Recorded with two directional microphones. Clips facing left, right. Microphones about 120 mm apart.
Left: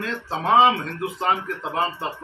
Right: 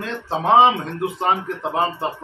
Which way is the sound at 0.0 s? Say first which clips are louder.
Right 3 dB; 20° right (ahead or behind).